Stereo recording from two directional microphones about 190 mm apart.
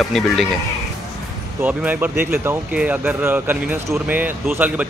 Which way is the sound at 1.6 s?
10° right (ahead or behind).